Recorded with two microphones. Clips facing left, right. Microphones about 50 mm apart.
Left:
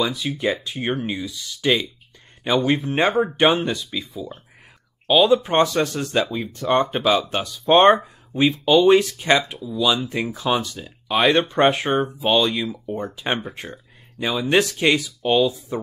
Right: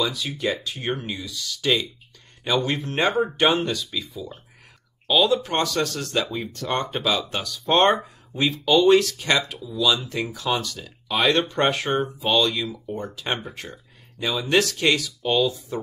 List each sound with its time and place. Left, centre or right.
0.0 s speech: centre
5.0 s speech: centre